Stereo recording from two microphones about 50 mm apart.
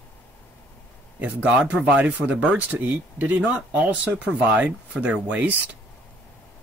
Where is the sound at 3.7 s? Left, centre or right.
Right.